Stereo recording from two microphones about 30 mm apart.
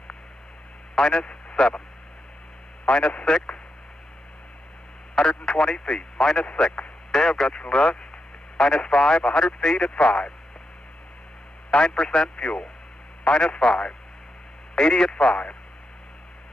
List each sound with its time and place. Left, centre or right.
0.9 s a man's voice: left
1.2 s speech: left
2.9 s speech: left
5.1 s a man's voice: left
7.7 s speech: left
11.7 s a man's voice: left